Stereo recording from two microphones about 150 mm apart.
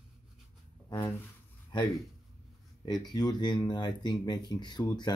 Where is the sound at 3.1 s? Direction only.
30° left (ahead or behind).